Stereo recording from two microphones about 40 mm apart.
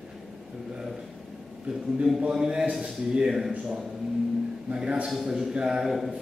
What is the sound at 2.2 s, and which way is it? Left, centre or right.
A man's voice, centre.